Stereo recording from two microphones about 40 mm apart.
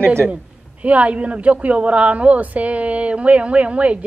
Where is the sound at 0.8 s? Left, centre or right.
Right.